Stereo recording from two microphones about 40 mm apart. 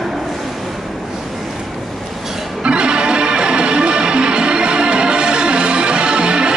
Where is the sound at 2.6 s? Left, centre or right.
Right.